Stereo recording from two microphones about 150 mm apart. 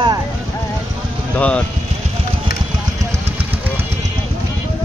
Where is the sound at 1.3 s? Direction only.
10° left (ahead or behind).